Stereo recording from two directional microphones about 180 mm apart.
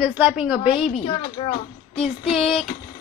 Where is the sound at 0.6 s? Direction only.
30° left (ahead or behind).